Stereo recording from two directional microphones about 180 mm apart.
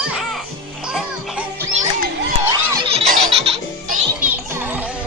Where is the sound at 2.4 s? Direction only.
20° right (ahead or behind).